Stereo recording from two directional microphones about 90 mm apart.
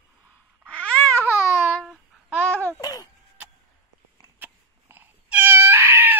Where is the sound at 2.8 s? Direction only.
45° left (ahead or behind).